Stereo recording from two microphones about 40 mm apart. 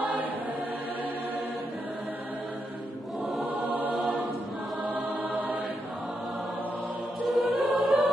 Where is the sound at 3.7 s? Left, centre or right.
Right.